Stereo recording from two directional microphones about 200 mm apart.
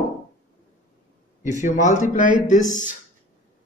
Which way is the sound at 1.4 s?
40° left (ahead or behind).